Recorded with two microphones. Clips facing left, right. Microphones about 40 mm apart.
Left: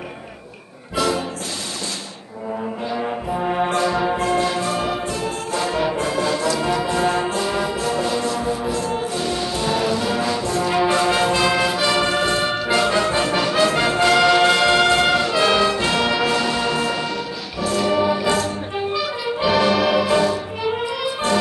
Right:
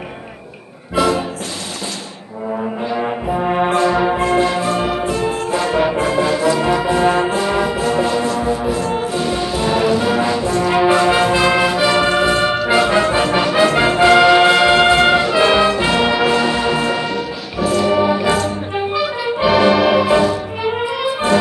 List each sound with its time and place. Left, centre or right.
0.9 s music: centre
2.9 s brass instrument: centre
13.7 s music: centre